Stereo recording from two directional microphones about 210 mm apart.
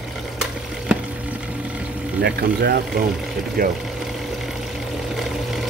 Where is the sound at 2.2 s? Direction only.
50° right (ahead or behind).